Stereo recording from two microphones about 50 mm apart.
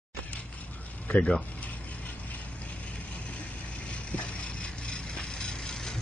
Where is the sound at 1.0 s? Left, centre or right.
Centre.